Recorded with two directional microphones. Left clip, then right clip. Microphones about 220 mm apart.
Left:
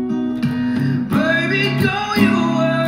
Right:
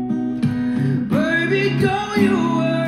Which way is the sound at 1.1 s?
20° left (ahead or behind).